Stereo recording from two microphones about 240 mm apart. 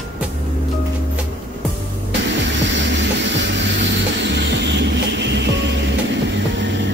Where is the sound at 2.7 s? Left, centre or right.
Right.